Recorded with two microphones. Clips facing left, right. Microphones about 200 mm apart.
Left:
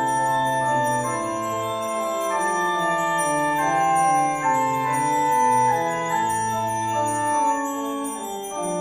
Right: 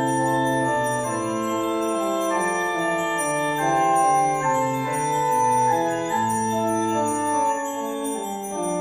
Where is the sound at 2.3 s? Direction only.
15° right (ahead or behind).